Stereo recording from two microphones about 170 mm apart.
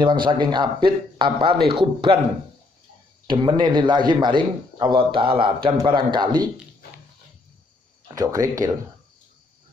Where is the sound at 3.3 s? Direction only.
25° right (ahead or behind).